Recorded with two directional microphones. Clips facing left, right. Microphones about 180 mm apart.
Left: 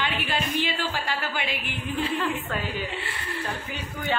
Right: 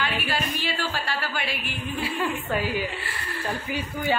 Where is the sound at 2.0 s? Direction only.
10° right (ahead or behind).